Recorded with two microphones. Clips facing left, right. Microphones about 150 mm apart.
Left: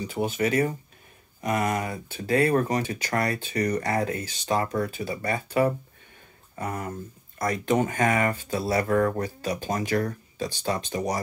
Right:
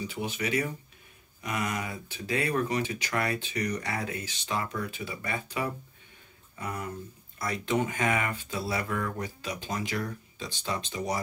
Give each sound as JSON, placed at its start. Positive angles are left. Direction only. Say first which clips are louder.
{"t": 0.0, "sound": "speech", "louder": "left 7 dB", "side_deg": 45}